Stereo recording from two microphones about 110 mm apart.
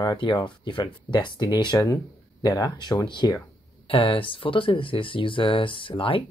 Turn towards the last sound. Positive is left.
turn(degrees=50)  # may be behind; listen again after turning